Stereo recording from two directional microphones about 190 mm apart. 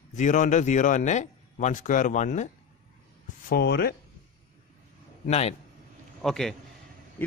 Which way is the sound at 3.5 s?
60° left (ahead or behind).